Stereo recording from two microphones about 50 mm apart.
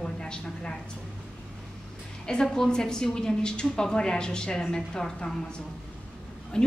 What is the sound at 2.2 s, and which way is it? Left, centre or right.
A woman's voice, centre.